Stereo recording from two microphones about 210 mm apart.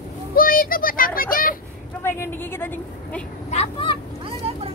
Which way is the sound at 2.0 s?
10° left (ahead or behind).